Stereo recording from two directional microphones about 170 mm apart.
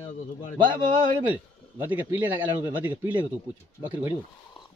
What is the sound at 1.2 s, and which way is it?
A man's voice, 10° right (ahead or behind).